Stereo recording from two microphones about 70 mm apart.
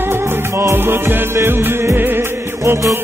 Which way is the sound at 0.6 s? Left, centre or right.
Right.